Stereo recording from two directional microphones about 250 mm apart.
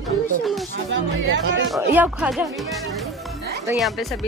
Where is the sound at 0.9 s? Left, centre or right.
Right.